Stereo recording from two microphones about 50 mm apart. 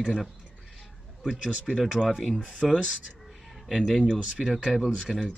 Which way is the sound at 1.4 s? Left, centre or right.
Centre.